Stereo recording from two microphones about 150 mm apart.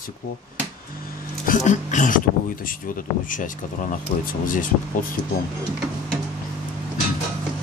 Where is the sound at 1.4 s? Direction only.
55° left (ahead or behind).